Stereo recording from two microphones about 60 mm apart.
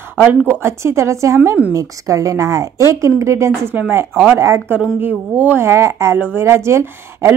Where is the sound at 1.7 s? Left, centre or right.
Right.